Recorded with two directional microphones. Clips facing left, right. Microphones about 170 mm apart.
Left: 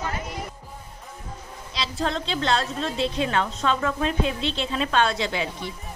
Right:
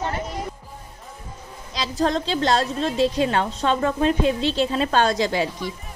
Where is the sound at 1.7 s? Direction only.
40° right (ahead or behind).